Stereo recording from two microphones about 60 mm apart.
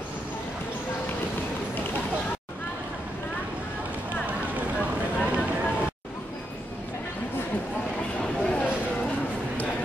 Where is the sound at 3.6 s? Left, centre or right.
Right.